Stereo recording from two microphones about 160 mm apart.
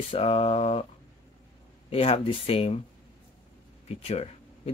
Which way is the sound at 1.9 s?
40° left (ahead or behind).